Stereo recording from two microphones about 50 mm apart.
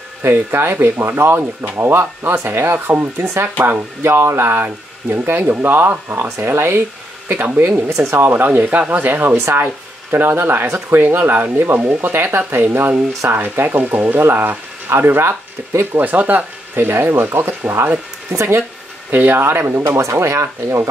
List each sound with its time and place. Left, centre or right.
0.2 s speech: right
4.0 s speech: right
6.5 s speech: right
7.7 s speech: right
8.2 s speech: right
8.5 s speech: right
9.3 s speech: right
11.9 s speech: right
15.0 s speech: right
15.8 s speech: right
16.7 s speech: right
19.0 s speech: right